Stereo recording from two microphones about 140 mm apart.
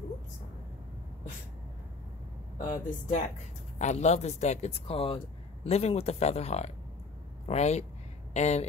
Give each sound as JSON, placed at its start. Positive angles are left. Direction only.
{"t": 2.7, "sound": "speech", "side_deg": 65}
{"t": 3.7, "sound": "speech", "side_deg": 55}